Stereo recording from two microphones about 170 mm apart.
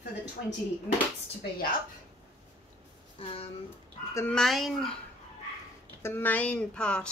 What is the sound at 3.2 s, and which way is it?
Speech, 35° left (ahead or behind).